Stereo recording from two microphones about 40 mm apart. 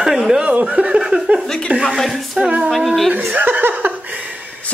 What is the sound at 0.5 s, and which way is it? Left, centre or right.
Speech, right.